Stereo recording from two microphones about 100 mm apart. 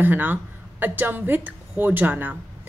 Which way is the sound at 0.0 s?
20° right (ahead or behind).